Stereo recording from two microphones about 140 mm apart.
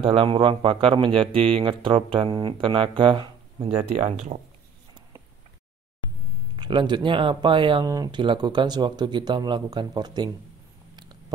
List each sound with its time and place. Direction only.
0.0 s speech: 40° right (ahead or behind)
3.9 s speech: 60° right (ahead or behind)
6.5 s speech: 35° right (ahead or behind)
7.8 s speech: 25° right (ahead or behind)
11.0 s a sound: 30° right (ahead or behind)